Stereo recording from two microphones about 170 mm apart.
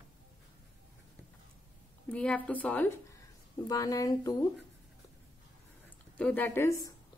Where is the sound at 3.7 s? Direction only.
20° left (ahead or behind).